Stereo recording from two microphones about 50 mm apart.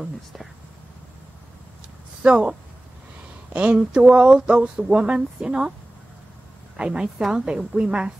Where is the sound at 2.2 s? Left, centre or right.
Centre.